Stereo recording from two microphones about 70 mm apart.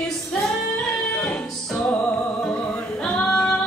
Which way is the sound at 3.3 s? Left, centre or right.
Centre.